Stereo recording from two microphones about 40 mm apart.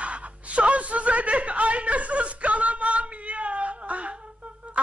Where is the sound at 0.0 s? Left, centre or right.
Right.